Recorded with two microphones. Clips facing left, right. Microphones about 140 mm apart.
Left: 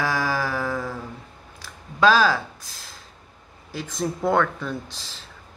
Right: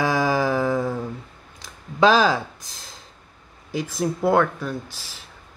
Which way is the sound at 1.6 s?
20° right (ahead or behind).